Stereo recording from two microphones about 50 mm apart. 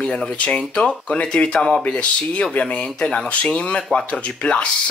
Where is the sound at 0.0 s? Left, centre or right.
Centre.